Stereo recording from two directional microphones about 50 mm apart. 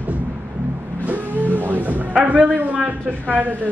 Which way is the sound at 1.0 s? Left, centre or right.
Right.